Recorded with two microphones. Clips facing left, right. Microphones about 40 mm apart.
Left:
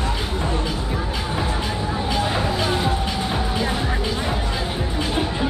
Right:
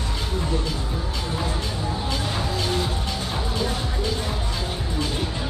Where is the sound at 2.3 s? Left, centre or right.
Left.